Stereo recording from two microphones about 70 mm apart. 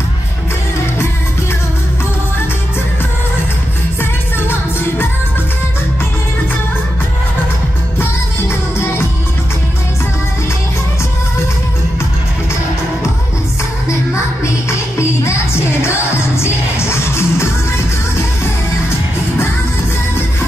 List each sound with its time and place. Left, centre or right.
4.0 s music: left
8.0 s music: left
13.8 s music: left